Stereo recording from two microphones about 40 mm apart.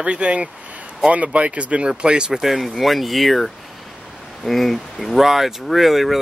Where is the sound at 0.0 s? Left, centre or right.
Right.